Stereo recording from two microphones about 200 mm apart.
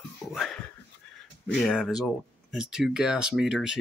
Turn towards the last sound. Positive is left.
turn(degrees=-5)  # may be behind; listen again after turning